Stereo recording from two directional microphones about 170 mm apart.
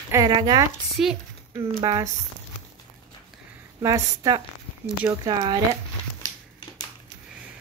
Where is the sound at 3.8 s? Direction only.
20° right (ahead or behind).